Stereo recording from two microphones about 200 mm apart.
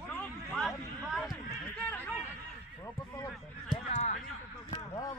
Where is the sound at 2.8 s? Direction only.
15° left (ahead or behind).